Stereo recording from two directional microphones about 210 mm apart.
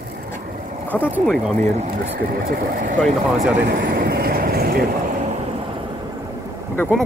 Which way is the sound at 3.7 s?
40° right (ahead or behind).